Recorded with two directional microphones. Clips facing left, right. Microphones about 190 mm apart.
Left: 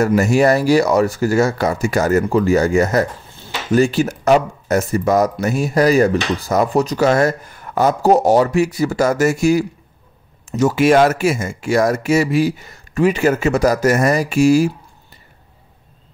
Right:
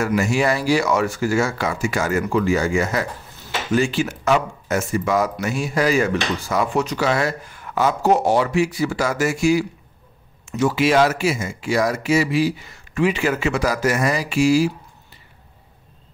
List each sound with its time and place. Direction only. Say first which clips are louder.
0.0 s speech: left 6 dB; 40° left (ahead or behind)
3.3 s a sound: left 2 dB; 30° left (ahead or behind)
3.7 s speech: left 5 dB; 40° left (ahead or behind)